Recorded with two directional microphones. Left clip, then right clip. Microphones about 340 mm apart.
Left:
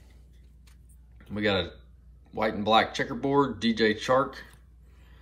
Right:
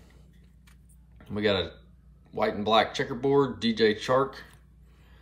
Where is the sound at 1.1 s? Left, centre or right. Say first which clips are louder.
Right 1 dB; centre.